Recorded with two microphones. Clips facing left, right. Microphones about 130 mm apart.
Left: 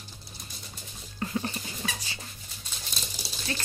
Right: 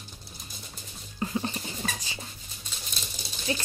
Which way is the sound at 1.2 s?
20° right (ahead or behind).